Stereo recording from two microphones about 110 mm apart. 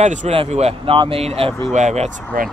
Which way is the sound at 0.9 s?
50° right (ahead or behind).